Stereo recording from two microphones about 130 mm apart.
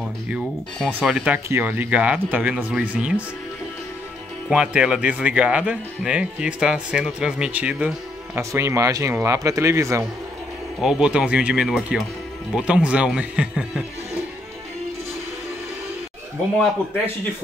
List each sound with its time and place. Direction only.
0.9 s speech: 10° right (ahead or behind)
4.5 s speech: 10° right (ahead or behind)
8.4 s speech: 20° right (ahead or behind)
10.8 s speech: 5° right (ahead or behind)